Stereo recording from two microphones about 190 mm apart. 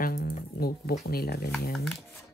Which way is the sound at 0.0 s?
50° left (ahead or behind).